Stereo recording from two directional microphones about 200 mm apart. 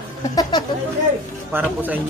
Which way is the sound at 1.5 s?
10° right (ahead or behind).